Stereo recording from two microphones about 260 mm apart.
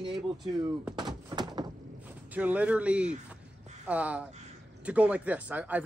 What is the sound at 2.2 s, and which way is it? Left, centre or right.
Speech, centre.